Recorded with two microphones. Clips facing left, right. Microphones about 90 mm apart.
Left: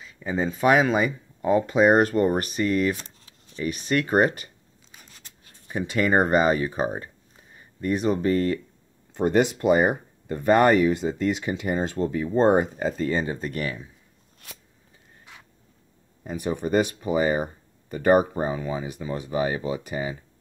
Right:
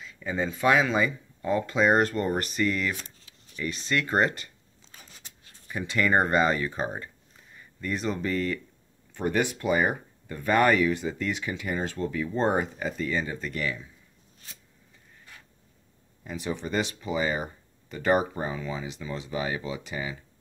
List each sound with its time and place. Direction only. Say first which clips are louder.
0.2 s speech: left 3 dB; 20° left (ahead or behind)
0.5 s speech: left 4 dB; 40° left (ahead or behind)
0.9 s speech: left 2 dB; 20° left (ahead or behind)
2.6 s speech: left 6 dB; 40° left (ahead or behind)
5.7 s speech: left 3 dB; 20° left (ahead or behind)
7.8 s speech: left 7 dB; 50° left (ahead or behind)
9.1 s speech: left 6 dB; 30° left (ahead or behind)
9.6 s speech: left 5 dB; 55° left (ahead or behind)
10.2 s speech: left 4 dB; 35° left (ahead or behind); by 13.7 s 50° left (ahead or behind)
16.3 s speech: left 6 dB; 50° left (ahead or behind)
18.3 s speech: left 5 dB; 30° left (ahead or behind)
18.8 s speech: left 4 dB; 40° left (ahead or behind)